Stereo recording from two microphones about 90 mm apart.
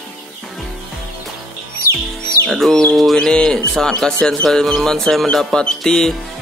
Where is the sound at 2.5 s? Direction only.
5° left (ahead or behind).